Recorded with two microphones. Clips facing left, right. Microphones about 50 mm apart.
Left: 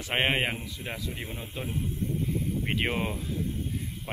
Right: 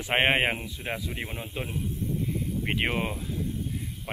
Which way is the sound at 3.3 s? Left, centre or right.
Left.